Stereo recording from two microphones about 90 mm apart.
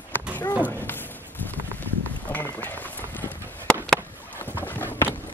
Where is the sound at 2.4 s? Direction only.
20° left (ahead or behind).